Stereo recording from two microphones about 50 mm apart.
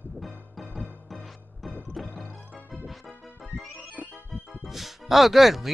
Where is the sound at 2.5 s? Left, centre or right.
Right.